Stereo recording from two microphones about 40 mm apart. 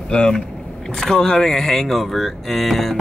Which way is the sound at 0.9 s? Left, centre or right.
Centre.